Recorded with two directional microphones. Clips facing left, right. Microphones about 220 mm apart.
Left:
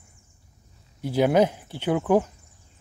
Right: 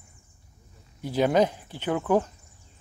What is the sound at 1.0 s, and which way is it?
Speech, 10° left (ahead or behind).